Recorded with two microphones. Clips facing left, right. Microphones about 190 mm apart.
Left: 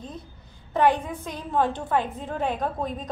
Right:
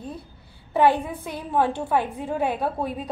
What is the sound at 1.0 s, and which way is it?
A woman's voice, 10° right (ahead or behind).